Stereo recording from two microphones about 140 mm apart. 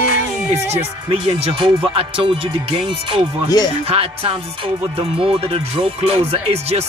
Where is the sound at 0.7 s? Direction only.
40° right (ahead or behind).